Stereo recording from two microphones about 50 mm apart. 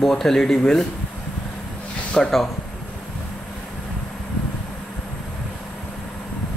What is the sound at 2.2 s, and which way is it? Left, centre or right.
Speech, centre.